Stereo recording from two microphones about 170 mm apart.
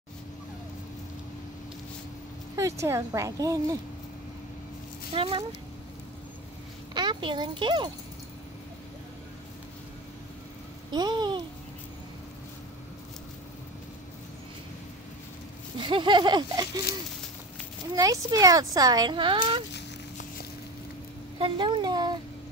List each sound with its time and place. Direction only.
2.5 s speech: 15° right (ahead or behind)
5.1 s speech: 30° right (ahead or behind)
6.9 s speech: 25° right (ahead or behind)
10.9 s speech: 25° right (ahead or behind)
15.8 s speech: 30° right (ahead or behind)
21.4 s speech: 30° right (ahead or behind)